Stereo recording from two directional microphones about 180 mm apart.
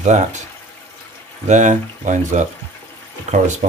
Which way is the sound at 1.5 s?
45° right (ahead or behind).